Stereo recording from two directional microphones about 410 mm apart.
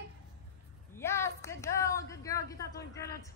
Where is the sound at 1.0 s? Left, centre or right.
Centre.